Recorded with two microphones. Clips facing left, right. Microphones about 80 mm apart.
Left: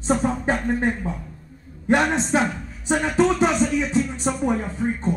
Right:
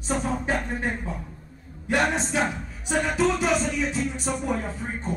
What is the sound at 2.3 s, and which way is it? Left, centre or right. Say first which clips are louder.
Speech: left 4 dB; left.